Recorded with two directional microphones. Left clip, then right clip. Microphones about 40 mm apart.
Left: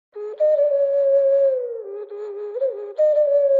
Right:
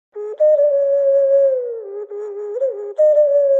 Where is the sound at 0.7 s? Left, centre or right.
Right.